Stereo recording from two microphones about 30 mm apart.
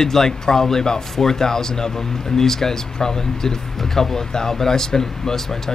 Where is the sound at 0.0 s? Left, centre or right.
Centre.